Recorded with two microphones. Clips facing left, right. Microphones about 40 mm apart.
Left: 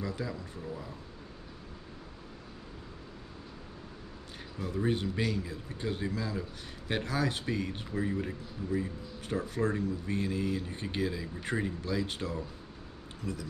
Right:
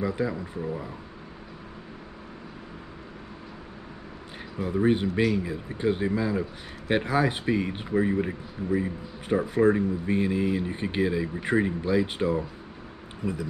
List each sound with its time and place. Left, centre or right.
0.0 s speech: right
4.6 s speech: right